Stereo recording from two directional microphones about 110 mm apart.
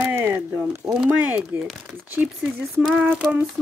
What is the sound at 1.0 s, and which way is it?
Child singing, 15° right (ahead or behind).